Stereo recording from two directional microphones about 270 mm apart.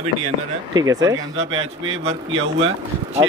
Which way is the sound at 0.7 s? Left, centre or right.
Centre.